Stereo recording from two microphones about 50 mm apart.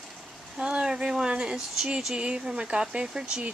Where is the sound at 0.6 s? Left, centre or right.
Centre.